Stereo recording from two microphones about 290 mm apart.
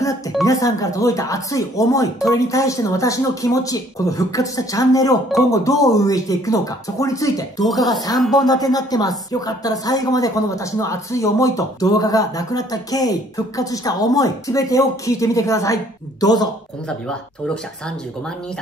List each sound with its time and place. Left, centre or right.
0.5 s speech: centre
8.2 s speech: centre
8.5 s speech: centre